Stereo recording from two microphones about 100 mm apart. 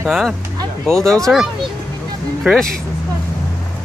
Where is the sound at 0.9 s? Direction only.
35° right (ahead or behind).